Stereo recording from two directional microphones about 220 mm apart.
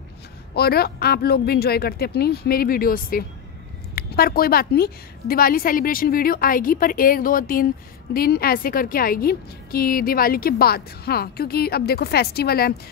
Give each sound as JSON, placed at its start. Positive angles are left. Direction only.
{"t": 0.6, "sound": "a woman's voice", "side_deg": 45}